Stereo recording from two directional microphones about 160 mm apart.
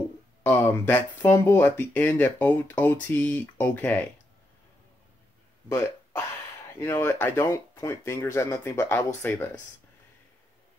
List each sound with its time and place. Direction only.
0.4 s a sound: 15° left (ahead or behind)
1.2 s speech: 15° left (ahead or behind)
5.7 s speech: 20° left (ahead or behind)